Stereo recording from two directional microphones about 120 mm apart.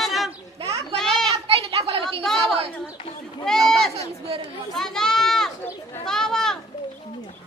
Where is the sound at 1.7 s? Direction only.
55° right (ahead or behind).